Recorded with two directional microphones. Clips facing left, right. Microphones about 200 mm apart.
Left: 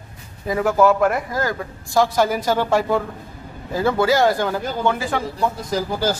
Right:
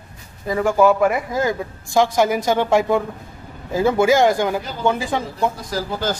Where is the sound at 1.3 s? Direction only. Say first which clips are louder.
Right 3 dB; 20° right (ahead or behind).